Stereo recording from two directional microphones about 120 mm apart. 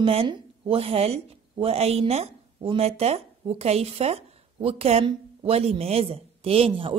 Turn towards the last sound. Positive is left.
turn(degrees=-50)  # may be behind; listen again after turning